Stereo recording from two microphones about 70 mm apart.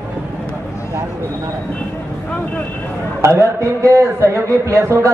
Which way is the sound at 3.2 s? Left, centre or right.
Right.